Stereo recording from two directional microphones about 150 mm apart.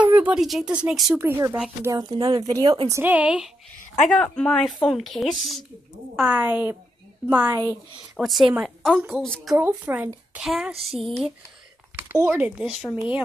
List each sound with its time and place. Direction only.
0.1 s a sound: 10° right (ahead or behind)
0.4 s a woman's voice: centre (ahead or behind)
1.1 s a woman's voice: 15° right (ahead or behind)
2.9 s a woman's voice: 10° right (ahead or behind)
4.1 s a woman's voice: 5° left (ahead or behind)
6.2 s a woman's voice: 10° right (ahead or behind)
8.2 s a woman's voice: centre (ahead or behind)
9.6 s a woman's voice: 10° right (ahead or behind)
12.1 s a woman's voice: 15° right (ahead or behind)